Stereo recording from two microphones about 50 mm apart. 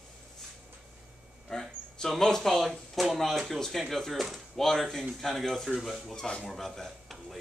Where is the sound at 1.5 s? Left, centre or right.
Centre.